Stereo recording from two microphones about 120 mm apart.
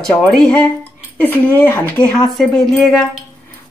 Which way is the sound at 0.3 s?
5° left (ahead or behind).